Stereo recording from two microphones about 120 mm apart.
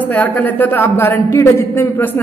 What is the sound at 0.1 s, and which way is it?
A man's voice, 15° left (ahead or behind).